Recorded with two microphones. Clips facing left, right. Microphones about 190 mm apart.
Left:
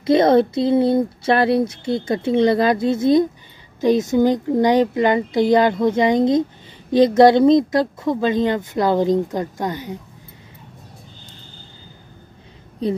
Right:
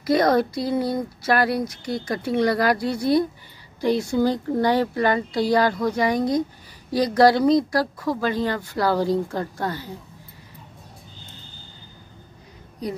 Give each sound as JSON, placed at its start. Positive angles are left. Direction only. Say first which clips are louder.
{"t": 0.0, "sound": "speech", "louder": "left 5 dB", "side_deg": 25}
{"t": 12.8, "sound": "a woman's voice", "louder": "left 7 dB", "side_deg": 25}